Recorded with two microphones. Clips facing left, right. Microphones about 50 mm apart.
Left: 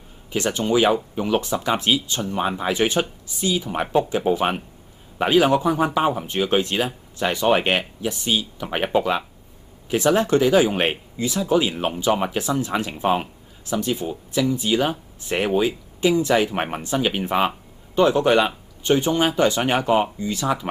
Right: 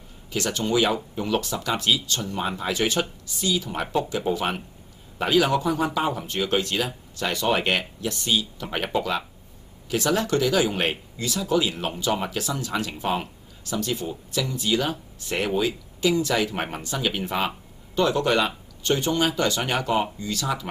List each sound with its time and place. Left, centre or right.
0.3 s speech: left